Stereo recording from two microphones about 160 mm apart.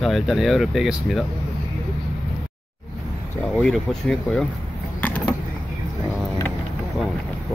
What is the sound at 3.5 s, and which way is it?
Speech, 5° left (ahead or behind).